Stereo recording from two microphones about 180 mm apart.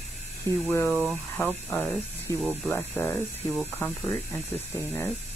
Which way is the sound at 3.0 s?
10° left (ahead or behind).